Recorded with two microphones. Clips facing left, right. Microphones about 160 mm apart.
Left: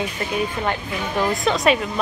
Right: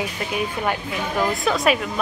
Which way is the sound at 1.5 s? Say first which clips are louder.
Left 3 dB; centre (ahead or behind).